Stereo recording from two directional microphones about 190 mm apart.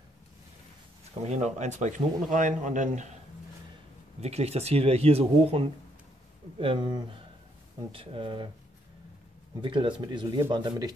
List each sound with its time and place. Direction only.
1.3 s a man's voice: 40° right (ahead or behind)
4.2 s a man's voice: 35° right (ahead or behind)
9.6 s speech: 25° right (ahead or behind)